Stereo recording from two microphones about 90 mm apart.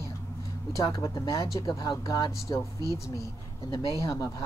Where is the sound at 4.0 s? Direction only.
40° left (ahead or behind).